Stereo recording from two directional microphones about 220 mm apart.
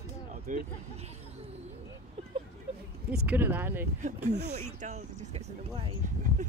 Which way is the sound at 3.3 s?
10° right (ahead or behind).